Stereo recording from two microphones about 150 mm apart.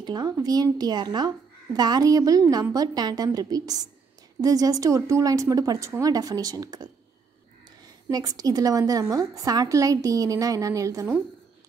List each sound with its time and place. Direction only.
0.0 s a woman's voice: 30° right (ahead or behind)
8.1 s a woman's voice: 25° right (ahead or behind)